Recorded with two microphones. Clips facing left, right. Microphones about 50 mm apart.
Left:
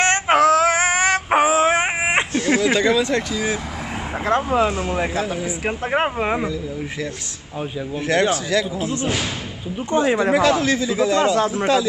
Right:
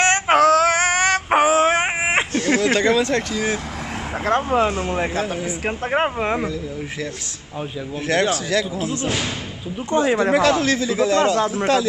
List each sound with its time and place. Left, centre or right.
0.3 s synthetic singing: centre
1.4 s a sound: centre
2.0 s speech: centre
4.3 s speech: centre
8.1 s speech: centre